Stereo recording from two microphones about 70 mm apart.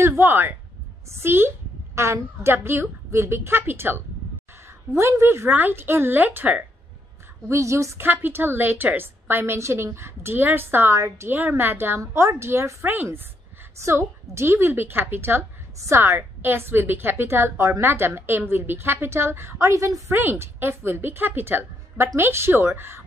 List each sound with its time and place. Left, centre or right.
0.0 s a woman's voice: right
5.2 s a woman's voice: right
7.4 s a woman's voice: right
8.1 s a woman's voice: right
11.3 s a woman's voice: right
13.8 s a woman's voice: right
20.2 s a woman's voice: right